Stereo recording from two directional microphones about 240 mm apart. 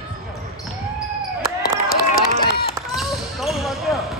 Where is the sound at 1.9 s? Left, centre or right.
Left.